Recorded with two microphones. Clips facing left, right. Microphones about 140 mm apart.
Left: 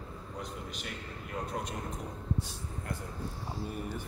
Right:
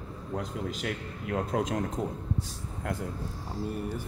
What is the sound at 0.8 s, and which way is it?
Speech, 90° right.